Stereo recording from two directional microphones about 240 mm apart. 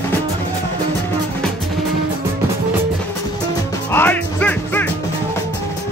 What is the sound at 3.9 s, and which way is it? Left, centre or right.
Music, centre.